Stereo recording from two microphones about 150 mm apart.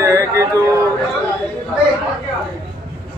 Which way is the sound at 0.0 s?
20° right (ahead or behind).